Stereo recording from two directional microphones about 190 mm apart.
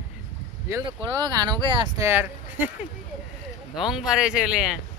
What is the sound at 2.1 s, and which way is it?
Speech, 10° right (ahead or behind).